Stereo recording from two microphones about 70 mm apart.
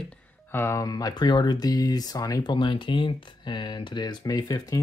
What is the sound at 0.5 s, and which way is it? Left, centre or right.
Speech, left.